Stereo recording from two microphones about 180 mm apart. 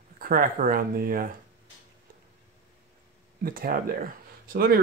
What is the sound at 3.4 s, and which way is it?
Speech, 55° right (ahead or behind).